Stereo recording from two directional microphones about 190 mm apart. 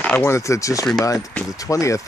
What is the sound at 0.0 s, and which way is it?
Speech, 10° left (ahead or behind).